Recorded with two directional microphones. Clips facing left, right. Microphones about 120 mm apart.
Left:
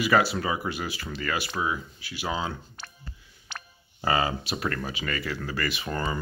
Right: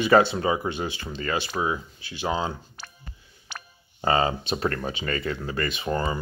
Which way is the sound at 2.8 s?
10° right (ahead or behind).